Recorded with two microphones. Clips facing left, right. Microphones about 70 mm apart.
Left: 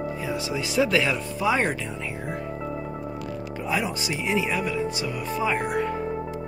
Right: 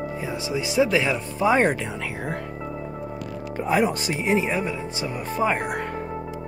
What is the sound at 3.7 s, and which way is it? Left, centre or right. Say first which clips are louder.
Speech: right 5 dB; right.